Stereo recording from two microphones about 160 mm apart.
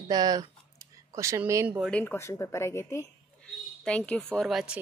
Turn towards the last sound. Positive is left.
turn(degrees=0)  # may be behind; listen again after turning